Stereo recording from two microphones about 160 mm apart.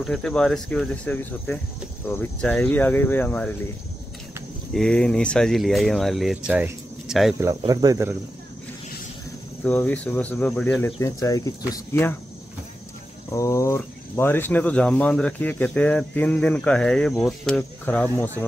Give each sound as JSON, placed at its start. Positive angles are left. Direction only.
{"t": 0.0, "sound": "speech", "side_deg": 5}
{"t": 4.7, "sound": "speech", "side_deg": 5}
{"t": 7.3, "sound": "speech", "side_deg": -20}
{"t": 9.6, "sound": "speech", "side_deg": 10}
{"t": 11.0, "sound": "speech", "side_deg": 20}
{"t": 13.3, "sound": "speech", "side_deg": 20}